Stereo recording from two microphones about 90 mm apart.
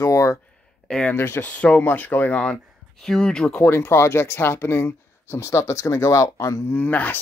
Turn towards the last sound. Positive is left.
turn(degrees=20)  # may be behind; listen again after turning